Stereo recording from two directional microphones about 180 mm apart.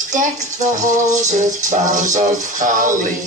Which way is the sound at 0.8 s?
40° right (ahead or behind).